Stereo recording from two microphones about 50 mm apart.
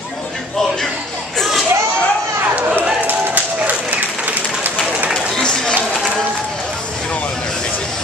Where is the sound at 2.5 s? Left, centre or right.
Right.